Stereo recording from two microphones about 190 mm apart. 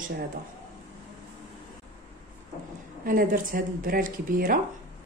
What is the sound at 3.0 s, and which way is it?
Speech, 50° right (ahead or behind).